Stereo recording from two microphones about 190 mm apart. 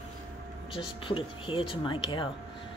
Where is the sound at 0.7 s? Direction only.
25° left (ahead or behind).